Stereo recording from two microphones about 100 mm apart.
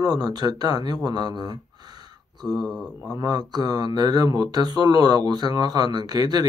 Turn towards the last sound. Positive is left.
turn(degrees=-45)  # may be behind; listen again after turning